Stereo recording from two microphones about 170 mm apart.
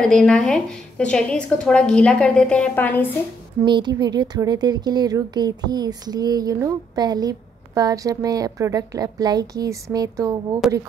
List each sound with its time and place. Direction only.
0.0 s speech: 5° left (ahead or behind)
3.6 s speech: 25° right (ahead or behind)